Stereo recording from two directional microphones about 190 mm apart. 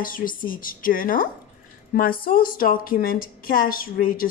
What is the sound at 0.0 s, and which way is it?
A woman's voice, 45° left (ahead or behind).